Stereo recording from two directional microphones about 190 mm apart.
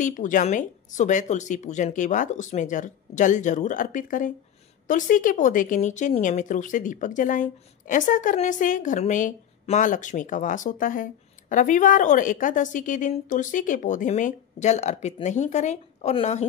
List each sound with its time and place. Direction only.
0.0 s speech: 40° left (ahead or behind)